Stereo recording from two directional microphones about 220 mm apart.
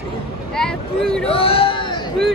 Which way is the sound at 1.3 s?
25° left (ahead or behind).